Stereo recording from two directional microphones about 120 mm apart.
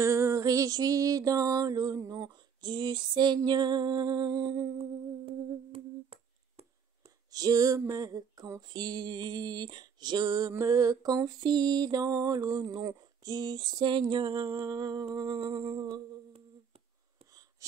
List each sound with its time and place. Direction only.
0.0 s music: 25° right (ahead or behind)
4.7 s humming: 50° right (ahead or behind)
7.2 s music: 30° right (ahead or behind)
17.6 s wheeze: 25° right (ahead or behind)